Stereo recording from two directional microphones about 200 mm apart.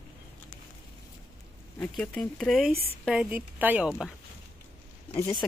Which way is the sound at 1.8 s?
5° left (ahead or behind).